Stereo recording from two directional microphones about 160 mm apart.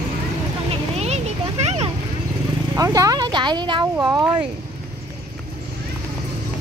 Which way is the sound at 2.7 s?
20° right (ahead or behind).